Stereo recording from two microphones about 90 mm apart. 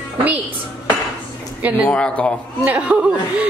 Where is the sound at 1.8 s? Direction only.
15° left (ahead or behind).